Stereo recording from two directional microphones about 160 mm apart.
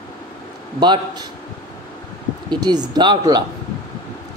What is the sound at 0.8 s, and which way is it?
Speech, 25° right (ahead or behind).